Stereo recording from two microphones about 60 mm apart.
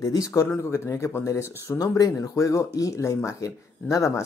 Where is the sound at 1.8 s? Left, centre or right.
Left.